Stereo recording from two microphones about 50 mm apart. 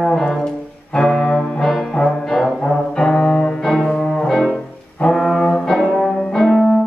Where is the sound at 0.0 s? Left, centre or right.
Centre.